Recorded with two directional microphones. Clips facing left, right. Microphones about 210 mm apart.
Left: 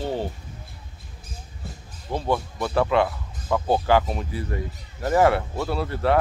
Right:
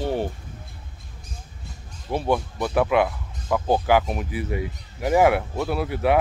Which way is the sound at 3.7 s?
10° right (ahead or behind).